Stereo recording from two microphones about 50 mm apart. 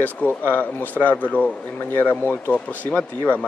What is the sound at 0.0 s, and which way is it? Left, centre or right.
A man's voice, left.